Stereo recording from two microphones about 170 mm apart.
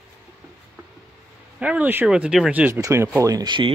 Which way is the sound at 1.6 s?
10° right (ahead or behind).